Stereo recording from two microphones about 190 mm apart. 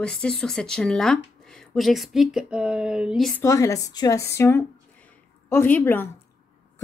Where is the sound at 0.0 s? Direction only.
5° left (ahead or behind).